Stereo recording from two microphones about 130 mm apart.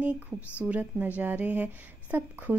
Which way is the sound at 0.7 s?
15° right (ahead or behind).